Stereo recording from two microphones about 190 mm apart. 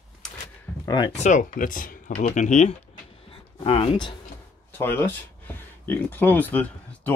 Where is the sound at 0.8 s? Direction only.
25° left (ahead or behind).